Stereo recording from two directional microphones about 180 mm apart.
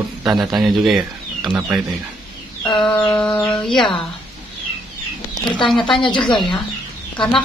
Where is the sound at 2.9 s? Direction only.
5° left (ahead or behind).